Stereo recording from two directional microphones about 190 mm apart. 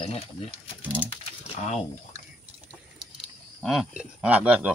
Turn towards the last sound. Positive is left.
turn(degrees=-5)  # may be behind; listen again after turning